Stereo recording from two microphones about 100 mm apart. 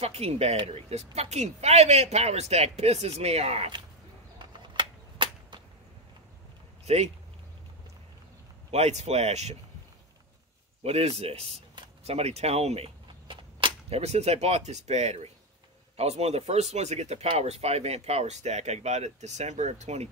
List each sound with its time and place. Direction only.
0.0 s speech: 90° right
4.4 s a sound: 50° right (ahead or behind)
8.7 s speech: 90° right
10.8 s speech: 90° right
13.3 s speech: 55° right (ahead or behind); by 20.0 s 90° right